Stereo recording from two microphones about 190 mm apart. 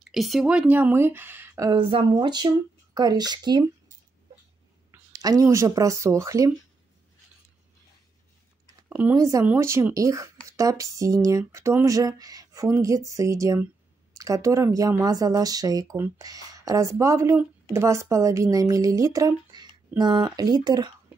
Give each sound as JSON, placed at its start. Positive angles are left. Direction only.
{"t": 0.0, "sound": "speech", "side_deg": 0}
{"t": 4.9, "sound": "speech", "side_deg": -20}
{"t": 8.7, "sound": "speech", "side_deg": -10}